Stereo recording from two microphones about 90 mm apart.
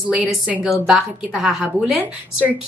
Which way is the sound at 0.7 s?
5° right (ahead or behind).